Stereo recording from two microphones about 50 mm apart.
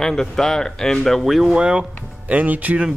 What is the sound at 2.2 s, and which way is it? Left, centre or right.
Speech, right.